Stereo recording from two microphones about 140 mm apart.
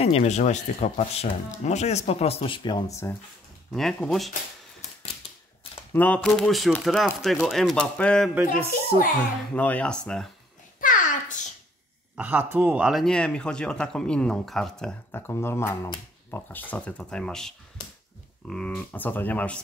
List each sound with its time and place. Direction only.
0.0 s speech: 50° left (ahead or behind); by 3.0 s 30° left (ahead or behind)
3.7 s speech: 5° left (ahead or behind)
5.9 s speech: 10° left (ahead or behind)
8.6 s a child's voice: 90° left
9.5 s speech: 10° left (ahead or behind)
10.8 s babbling: 70° left (ahead or behind)
12.2 s speech: 10° right (ahead or behind)
13.0 s speech: 5° left (ahead or behind)
15.0 s speech: 15° left (ahead or behind)